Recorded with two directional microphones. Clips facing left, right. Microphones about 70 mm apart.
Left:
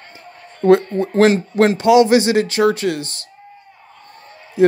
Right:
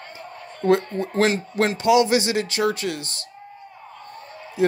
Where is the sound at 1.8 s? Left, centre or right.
Left.